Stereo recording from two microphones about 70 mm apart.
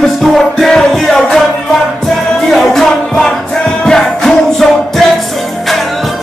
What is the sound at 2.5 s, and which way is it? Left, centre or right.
Music, centre.